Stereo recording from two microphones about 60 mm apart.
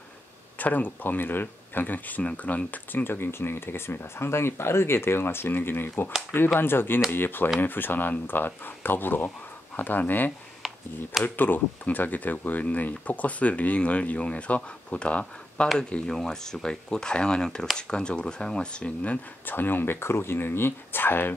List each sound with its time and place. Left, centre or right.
0.6 s speech: left
19.4 s speech: left